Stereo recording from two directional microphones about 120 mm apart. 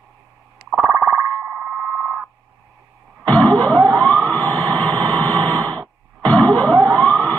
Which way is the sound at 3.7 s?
35° right (ahead or behind).